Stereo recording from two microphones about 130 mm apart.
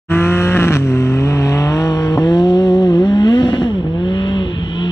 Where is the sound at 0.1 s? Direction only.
20° left (ahead or behind).